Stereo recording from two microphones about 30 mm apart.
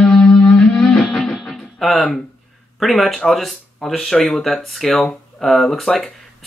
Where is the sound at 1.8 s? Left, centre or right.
Centre.